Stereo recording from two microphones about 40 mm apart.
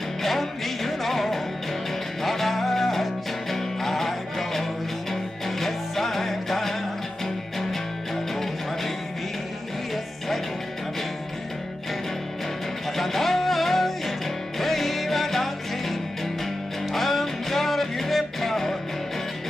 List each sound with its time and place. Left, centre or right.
0.2 s music: centre
12.9 s music: centre